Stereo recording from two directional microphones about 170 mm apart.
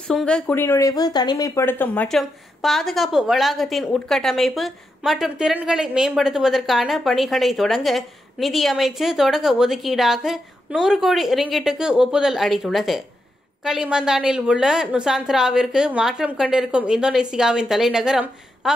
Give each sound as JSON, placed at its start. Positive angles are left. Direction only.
{"t": 0.0, "sound": "speech", "side_deg": 5}